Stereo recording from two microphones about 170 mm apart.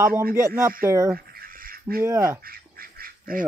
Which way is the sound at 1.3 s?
55° right (ahead or behind).